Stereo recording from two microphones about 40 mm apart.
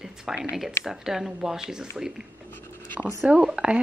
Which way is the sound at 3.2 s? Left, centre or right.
Right.